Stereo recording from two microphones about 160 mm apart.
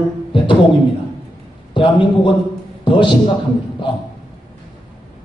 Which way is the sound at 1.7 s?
30° left (ahead or behind).